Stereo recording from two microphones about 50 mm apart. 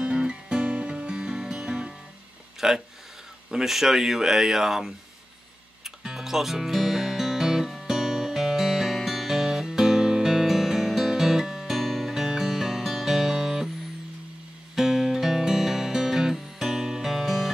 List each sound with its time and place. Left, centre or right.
0.0 s music: centre
2.6 s speech: centre
5.9 s music: centre
14.8 s music: centre